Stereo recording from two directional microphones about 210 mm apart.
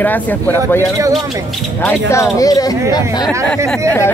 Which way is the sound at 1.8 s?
15° left (ahead or behind).